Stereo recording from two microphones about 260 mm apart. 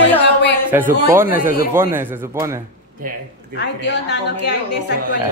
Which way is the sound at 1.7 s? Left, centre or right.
Centre.